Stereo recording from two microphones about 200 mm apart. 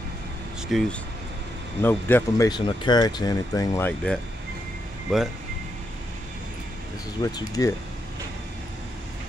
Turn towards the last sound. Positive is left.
turn(degrees=20)  # may be behind; listen again after turning